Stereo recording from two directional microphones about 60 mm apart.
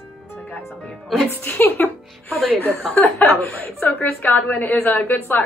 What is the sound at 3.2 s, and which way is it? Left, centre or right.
A woman's voice, left.